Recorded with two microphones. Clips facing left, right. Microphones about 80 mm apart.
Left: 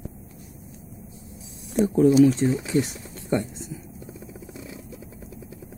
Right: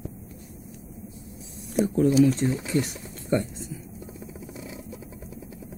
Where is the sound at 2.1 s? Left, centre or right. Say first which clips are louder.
Left 4 dB; centre.